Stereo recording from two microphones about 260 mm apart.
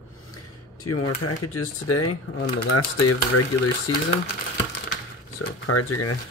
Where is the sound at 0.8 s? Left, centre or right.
Left.